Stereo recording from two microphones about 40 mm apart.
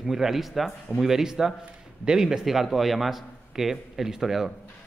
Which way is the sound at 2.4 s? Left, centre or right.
Centre.